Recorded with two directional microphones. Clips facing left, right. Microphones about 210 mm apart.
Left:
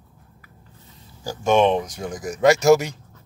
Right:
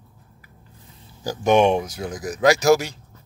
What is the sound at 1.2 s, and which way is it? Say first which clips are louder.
Speech: right 1 dB; 15° right (ahead or behind).